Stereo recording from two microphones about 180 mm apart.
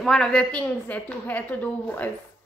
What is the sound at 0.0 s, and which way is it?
A woman's voice, centre (ahead or behind).